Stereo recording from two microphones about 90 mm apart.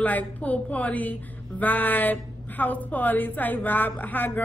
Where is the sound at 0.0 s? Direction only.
15° left (ahead or behind).